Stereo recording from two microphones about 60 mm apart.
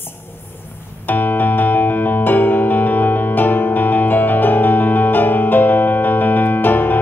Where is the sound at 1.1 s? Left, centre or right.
Left.